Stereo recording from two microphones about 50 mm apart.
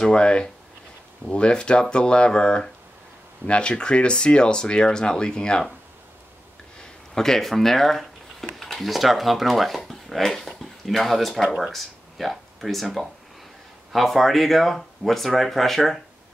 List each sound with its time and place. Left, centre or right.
0.0 s speech: centre
7.2 s speech: centre